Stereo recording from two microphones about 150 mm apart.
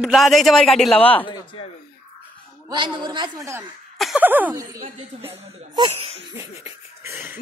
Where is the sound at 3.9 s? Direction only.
Centre (ahead or behind).